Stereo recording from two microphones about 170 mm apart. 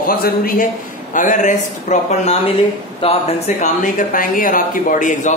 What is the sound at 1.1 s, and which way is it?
Speech, 50° left (ahead or behind).